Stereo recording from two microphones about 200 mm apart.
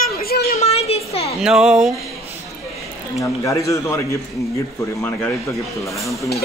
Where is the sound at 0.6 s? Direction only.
30° left (ahead or behind).